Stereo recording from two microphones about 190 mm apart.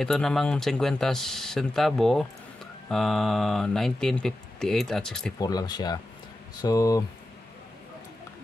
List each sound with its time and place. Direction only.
0.0 s speech: 5° left (ahead or behind)
5.4 s speech: 20° left (ahead or behind)